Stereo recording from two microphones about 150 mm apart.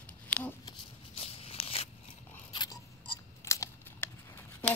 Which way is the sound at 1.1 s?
40° left (ahead or behind).